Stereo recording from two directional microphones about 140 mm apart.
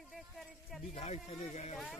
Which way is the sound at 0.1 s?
Centre (ahead or behind).